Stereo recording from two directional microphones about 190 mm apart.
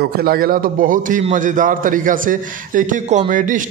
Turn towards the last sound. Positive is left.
turn(degrees=-45)  # may be behind; listen again after turning